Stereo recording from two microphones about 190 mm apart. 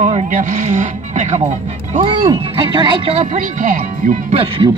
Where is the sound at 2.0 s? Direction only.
25° right (ahead or behind).